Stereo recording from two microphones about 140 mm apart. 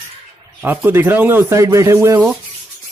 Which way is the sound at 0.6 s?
15° right (ahead or behind).